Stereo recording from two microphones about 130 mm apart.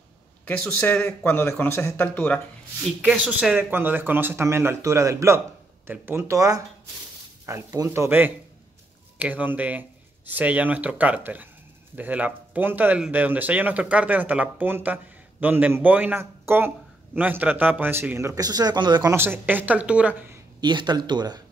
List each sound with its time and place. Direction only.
0.5 s speech: 10° left (ahead or behind)
3.3 s speech: 10° right (ahead or behind); by 19.0 s 35° right (ahead or behind)
19.0 s speech: 15° right (ahead or behind)
20.6 s speech: 35° right (ahead or behind)